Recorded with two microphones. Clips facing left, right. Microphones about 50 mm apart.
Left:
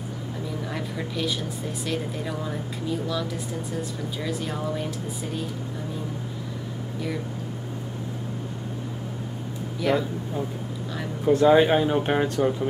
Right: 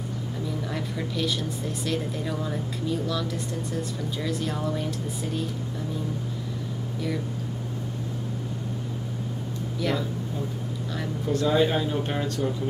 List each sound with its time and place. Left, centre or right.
0.7 s a woman's voice: centre
9.8 s speech: centre
11.2 s speech: left